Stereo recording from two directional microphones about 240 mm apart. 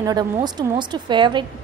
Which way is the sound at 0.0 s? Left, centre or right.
Centre.